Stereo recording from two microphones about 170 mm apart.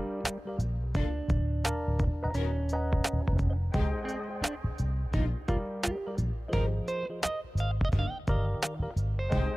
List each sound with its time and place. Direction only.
0.0 s music: centre (ahead or behind)